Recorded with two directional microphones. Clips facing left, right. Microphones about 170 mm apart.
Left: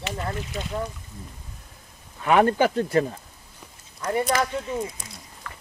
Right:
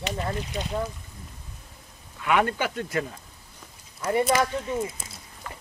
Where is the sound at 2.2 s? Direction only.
35° left (ahead or behind).